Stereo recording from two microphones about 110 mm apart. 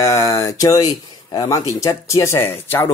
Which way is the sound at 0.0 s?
30° left (ahead or behind).